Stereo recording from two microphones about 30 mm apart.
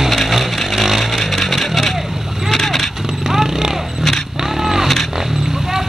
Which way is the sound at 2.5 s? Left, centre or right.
Centre.